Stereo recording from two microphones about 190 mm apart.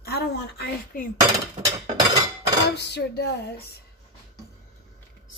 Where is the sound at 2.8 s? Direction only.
60° left (ahead or behind).